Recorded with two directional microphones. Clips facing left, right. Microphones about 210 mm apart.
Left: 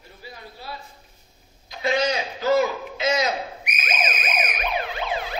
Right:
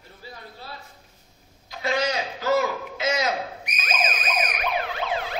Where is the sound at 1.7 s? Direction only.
20° left (ahead or behind).